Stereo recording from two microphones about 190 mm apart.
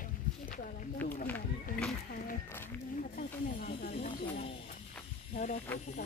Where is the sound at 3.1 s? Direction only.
45° left (ahead or behind).